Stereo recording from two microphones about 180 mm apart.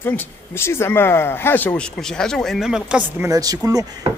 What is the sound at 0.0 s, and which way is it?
Speech, 10° left (ahead or behind).